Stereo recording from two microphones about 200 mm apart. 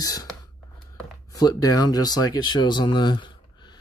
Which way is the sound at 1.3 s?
15° left (ahead or behind).